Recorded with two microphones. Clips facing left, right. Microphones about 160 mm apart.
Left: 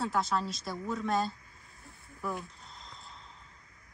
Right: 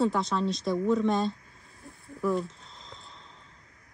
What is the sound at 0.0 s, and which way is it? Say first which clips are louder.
Speech: right 5 dB; centre (ahead or behind).